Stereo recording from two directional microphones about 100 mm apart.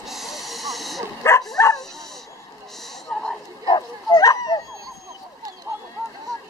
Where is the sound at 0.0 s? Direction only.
Centre (ahead or behind).